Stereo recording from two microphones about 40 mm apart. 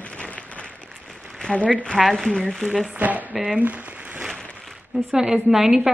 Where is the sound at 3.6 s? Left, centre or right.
Right.